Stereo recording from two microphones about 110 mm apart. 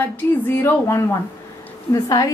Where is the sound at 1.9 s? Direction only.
35° left (ahead or behind).